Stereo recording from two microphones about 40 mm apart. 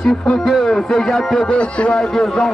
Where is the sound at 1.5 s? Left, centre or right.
Left.